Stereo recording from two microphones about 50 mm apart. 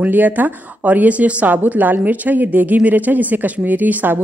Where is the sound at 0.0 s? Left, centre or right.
Right.